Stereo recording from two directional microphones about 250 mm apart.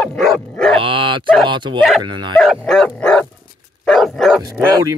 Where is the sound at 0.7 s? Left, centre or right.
Right.